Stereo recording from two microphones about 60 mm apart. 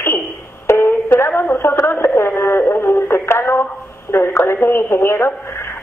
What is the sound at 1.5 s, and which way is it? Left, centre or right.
Radio, left.